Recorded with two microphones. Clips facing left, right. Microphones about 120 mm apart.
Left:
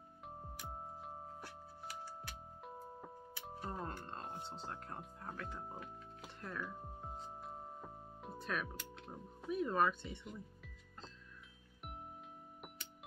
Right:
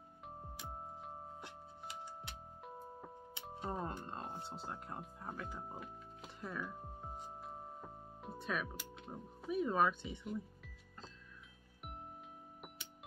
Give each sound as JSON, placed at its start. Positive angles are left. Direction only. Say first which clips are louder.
{"t": 1.4, "sound": "music", "louder": "even", "side_deg": -20}
{"t": 3.5, "sound": "music", "louder": "right 3 dB", "side_deg": -20}
{"t": 3.8, "sound": "speech", "louder": "right 2 dB", "side_deg": -10}